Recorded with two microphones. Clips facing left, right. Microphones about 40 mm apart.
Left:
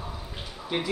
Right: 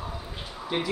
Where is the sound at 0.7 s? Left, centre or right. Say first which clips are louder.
Right 1 dB; centre.